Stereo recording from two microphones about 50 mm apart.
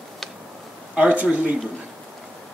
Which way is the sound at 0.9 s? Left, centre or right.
Right.